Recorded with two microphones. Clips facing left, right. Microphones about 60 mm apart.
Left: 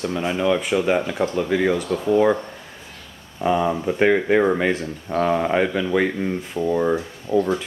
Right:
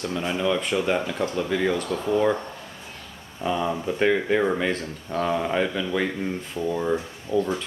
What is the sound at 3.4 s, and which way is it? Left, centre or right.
Speech, centre.